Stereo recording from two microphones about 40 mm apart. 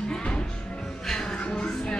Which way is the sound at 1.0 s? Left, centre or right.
Centre.